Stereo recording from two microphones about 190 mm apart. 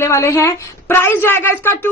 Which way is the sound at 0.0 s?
15° left (ahead or behind).